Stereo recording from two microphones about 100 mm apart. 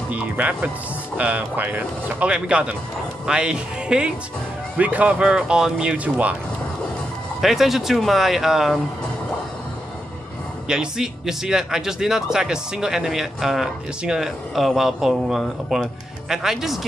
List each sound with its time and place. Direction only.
0.1 s speech: 15° right (ahead or behind)
7.4 s speech: 5° right (ahead or behind)
10.7 s speech: 5° right (ahead or behind)